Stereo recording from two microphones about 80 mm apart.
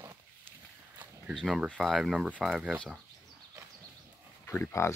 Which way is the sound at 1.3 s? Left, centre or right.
Centre.